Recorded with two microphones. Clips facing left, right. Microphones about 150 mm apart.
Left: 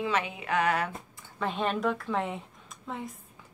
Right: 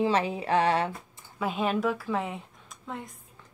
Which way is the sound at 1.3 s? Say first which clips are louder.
Right 2 dB; 5° right (ahead or behind).